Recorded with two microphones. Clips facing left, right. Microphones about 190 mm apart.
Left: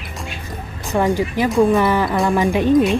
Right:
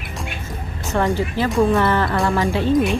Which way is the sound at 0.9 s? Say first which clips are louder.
Left 2 dB; 15° left (ahead or behind).